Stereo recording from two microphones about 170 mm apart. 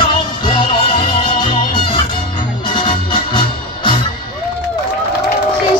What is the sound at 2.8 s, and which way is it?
Music, 30° left (ahead or behind).